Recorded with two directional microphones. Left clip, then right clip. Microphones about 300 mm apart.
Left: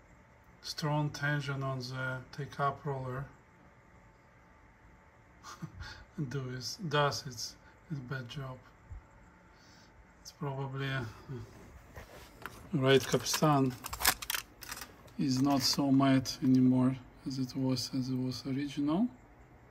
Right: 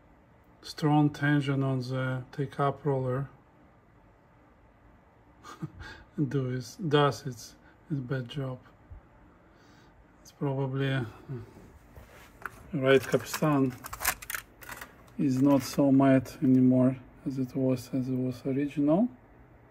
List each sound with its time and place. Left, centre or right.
0.7 s speech: centre
5.4 s speech: centre
10.4 s speech: centre
13.2 s speech: centre
13.9 s coin: left
15.1 s speech: centre